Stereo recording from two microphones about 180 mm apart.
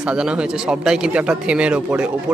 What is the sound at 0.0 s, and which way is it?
A man's voice, 5° right (ahead or behind).